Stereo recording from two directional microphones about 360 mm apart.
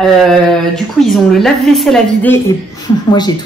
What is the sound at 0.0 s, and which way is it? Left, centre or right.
Speech, centre.